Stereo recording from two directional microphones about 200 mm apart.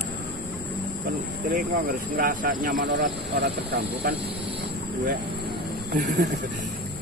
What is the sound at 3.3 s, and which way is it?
Speech, 55° right (ahead or behind).